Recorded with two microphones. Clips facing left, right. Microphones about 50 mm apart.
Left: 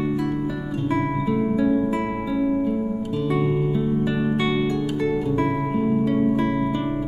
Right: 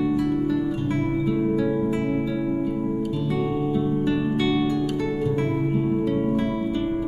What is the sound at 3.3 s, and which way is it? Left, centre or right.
Music, centre.